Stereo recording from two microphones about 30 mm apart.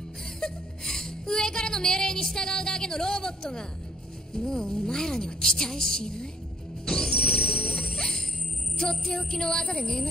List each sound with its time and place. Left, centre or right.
0.4 s music: centre
4.4 s a woman's voice: left
6.9 s music: centre
7.6 s music: left
7.9 s music: centre
8.7 s a woman's voice: centre